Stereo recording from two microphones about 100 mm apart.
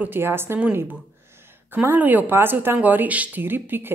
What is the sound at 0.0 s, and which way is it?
Speech, 20° right (ahead or behind).